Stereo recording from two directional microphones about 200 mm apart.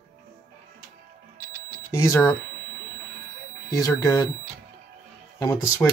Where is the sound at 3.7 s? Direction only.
20° left (ahead or behind).